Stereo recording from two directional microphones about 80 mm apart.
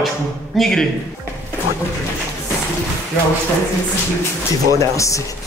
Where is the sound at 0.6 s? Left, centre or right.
Centre.